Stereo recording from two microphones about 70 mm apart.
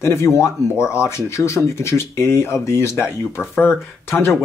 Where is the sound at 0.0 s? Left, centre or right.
Left.